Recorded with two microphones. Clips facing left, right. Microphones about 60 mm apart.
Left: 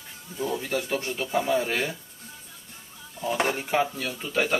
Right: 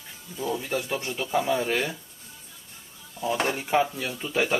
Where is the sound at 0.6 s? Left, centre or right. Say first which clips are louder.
Left 1 dB; centre.